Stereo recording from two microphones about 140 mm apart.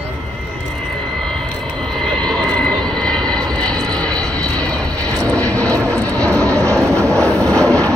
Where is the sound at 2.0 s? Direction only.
5° left (ahead or behind).